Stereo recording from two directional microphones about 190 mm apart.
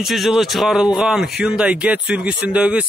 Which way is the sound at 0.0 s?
Centre (ahead or behind).